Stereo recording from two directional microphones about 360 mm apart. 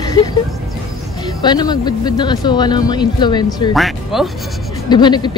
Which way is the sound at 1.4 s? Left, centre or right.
Centre.